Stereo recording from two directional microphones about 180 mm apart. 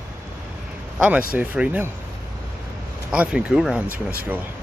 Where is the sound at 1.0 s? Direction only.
5° right (ahead or behind).